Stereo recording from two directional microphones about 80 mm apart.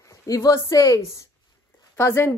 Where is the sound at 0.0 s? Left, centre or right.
Left.